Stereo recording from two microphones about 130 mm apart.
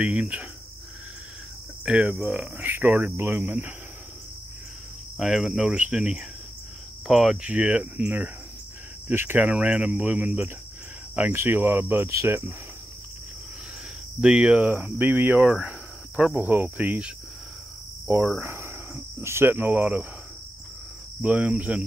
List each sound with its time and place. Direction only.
0.0 s speech: 10° right (ahead or behind)
1.9 s speech: 5° right (ahead or behind)
5.1 s cricket: 5° right (ahead or behind)
7.1 s speech: centre (ahead or behind); by 12.5 s 20° right (ahead or behind)
14.2 s speech: 10° right (ahead or behind)
18.4 s speech: 15° right (ahead or behind)
21.2 s speech: 10° right (ahead or behind)